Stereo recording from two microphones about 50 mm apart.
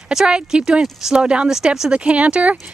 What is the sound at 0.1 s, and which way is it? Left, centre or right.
Speech, centre.